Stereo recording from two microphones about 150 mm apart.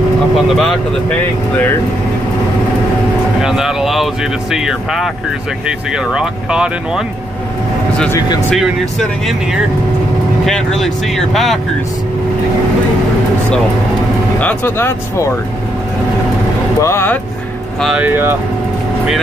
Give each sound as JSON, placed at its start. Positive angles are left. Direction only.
{"t": 0.5, "sound": "speech", "side_deg": 0}
{"t": 3.3, "sound": "speech", "side_deg": -5}
{"t": 8.5, "sound": "speech", "side_deg": 0}
{"t": 14.4, "sound": "speech", "side_deg": 15}
{"t": 16.8, "sound": "speech", "side_deg": 15}
{"t": 17.7, "sound": "speech", "side_deg": 0}
{"t": 18.0, "sound": "speech", "side_deg": -15}